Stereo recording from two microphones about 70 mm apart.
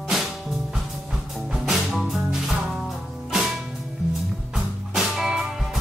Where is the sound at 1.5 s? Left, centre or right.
Centre.